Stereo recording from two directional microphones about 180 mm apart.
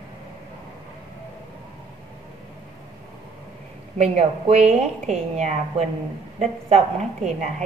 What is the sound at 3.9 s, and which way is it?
A woman's voice, 35° right (ahead or behind).